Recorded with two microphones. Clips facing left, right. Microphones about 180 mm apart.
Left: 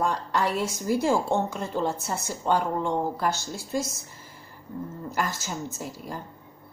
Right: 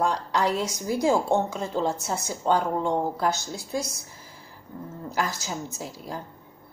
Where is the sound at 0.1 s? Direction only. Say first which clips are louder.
Right 1 dB; 15° right (ahead or behind).